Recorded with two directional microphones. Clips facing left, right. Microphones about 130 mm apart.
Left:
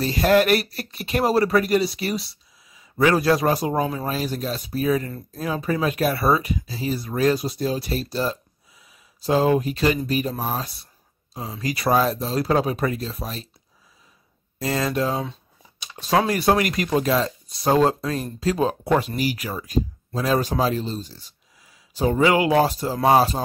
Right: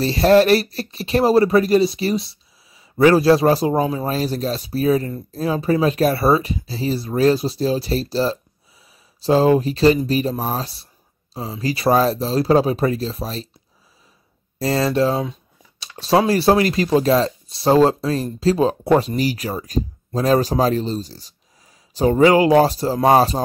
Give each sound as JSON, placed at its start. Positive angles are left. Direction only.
{"t": 0.0, "sound": "speech", "side_deg": -35}
{"t": 14.6, "sound": "speech", "side_deg": -35}